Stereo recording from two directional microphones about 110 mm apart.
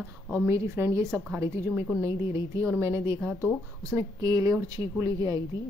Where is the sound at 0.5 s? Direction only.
25° right (ahead or behind).